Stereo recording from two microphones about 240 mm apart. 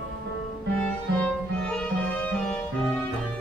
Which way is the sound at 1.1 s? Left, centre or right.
Centre.